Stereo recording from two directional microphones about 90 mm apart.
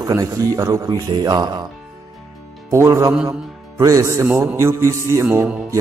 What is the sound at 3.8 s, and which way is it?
Speech, 40° right (ahead or behind).